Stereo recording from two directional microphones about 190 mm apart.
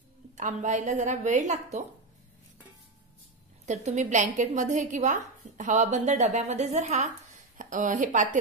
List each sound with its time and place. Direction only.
0.4 s a woman's voice: 40° right (ahead or behind)
3.6 s a woman's voice: 40° right (ahead or behind)